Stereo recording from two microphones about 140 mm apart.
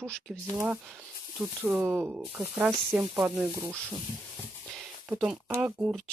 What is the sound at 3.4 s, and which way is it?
Speech, 25° right (ahead or behind).